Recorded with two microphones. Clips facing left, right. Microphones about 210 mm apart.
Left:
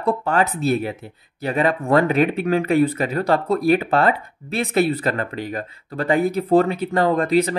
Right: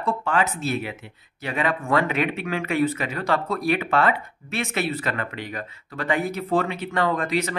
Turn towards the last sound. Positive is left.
turn(degrees=35)  # may be behind; listen again after turning